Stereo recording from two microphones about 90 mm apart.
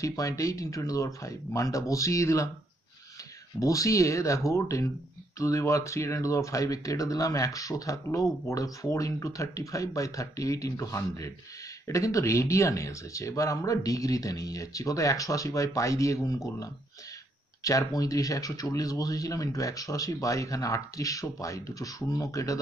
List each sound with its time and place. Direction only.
0.0 s speech: 40° left (ahead or behind)
3.5 s speech: 40° left (ahead or behind)